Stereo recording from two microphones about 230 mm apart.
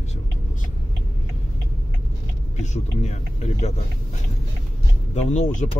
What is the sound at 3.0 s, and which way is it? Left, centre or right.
Speech, left.